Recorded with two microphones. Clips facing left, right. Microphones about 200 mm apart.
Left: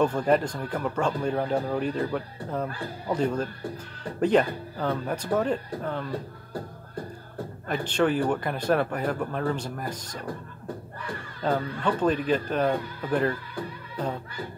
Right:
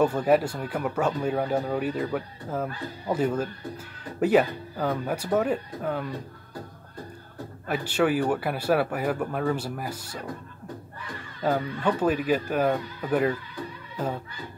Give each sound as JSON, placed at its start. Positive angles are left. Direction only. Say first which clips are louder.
{"t": 0.0, "sound": "speech", "louder": "right 1 dB", "side_deg": -5}
{"t": 7.6, "sound": "speech", "louder": "even", "side_deg": -10}
{"t": 11.4, "sound": "speech", "louder": "right 1 dB", "side_deg": -10}